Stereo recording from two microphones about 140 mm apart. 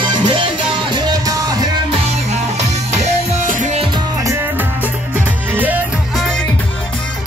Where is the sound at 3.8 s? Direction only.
30° right (ahead or behind); by 5.9 s 10° right (ahead or behind).